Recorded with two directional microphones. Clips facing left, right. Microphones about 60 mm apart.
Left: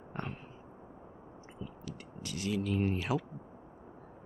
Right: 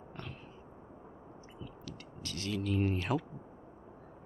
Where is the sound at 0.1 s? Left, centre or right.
Left.